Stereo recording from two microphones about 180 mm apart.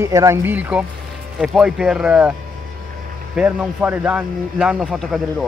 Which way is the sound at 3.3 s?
5° right (ahead or behind).